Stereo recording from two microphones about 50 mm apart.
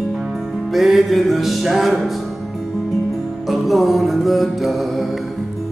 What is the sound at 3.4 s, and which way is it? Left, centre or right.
Music, centre.